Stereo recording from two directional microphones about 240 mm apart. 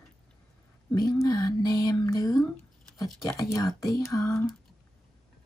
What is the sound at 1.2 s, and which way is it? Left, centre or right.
Speech, centre.